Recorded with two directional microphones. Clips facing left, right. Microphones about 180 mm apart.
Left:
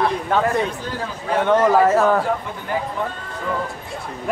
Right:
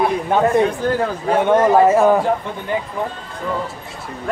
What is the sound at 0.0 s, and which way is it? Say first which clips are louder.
Speech: right 3 dB; 15° right (ahead or behind).